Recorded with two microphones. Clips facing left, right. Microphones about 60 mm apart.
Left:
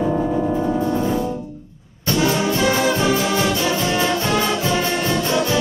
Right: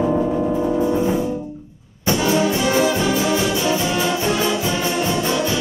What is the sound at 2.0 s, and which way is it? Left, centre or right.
Brass instrument, centre.